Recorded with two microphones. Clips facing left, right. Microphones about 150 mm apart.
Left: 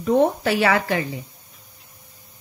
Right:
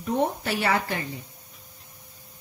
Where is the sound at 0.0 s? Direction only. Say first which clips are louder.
Left 7 dB; 90° left.